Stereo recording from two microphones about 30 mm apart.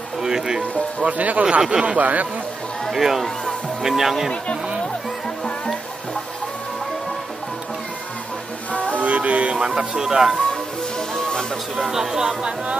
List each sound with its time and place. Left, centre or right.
0.2 s speech: right
1.0 s speech: right
1.6 s speech: right
2.0 s speech: right
2.9 s speech: centre
8.7 s music: left
9.0 s music: right
10.0 s speech: centre
11.1 s music: left
11.9 s speech: centre